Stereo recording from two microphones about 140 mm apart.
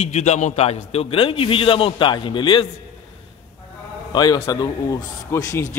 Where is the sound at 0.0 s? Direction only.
55° left (ahead or behind); by 2.6 s 35° left (ahead or behind).